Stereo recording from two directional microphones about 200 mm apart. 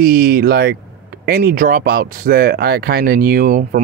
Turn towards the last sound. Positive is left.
turn(degrees=-45)  # may be behind; listen again after turning